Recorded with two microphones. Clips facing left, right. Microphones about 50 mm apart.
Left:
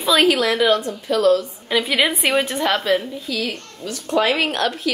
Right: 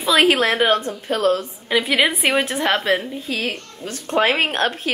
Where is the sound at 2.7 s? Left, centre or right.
Right.